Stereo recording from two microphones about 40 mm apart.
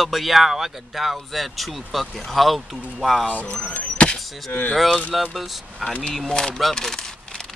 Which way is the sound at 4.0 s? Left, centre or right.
Left.